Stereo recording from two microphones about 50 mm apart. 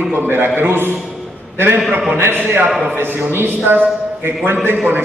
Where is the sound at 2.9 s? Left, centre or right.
Right.